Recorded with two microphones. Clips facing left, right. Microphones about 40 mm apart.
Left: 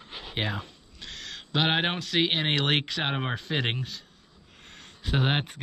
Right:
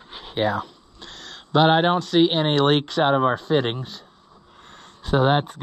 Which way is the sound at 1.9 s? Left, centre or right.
Left.